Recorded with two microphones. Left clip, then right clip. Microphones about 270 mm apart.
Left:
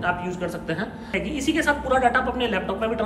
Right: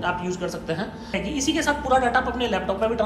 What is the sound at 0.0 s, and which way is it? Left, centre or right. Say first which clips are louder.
A woman's voice: even; centre.